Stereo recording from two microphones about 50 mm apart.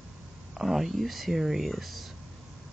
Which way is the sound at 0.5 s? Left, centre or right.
Centre.